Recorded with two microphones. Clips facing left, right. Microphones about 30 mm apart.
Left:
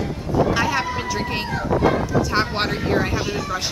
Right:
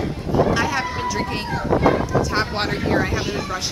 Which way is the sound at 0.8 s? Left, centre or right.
Centre.